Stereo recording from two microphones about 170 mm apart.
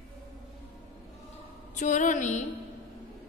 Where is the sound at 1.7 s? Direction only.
45° left (ahead or behind).